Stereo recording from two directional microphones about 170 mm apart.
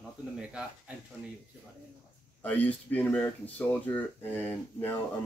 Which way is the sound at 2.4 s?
10° left (ahead or behind).